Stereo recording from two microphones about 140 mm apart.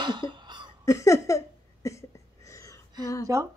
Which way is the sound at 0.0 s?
35° right (ahead or behind).